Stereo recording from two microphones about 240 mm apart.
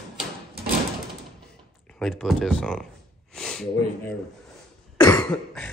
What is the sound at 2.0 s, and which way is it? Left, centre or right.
Speech, centre.